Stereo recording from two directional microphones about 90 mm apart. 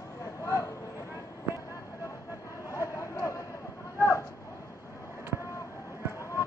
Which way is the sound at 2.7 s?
35° left (ahead or behind).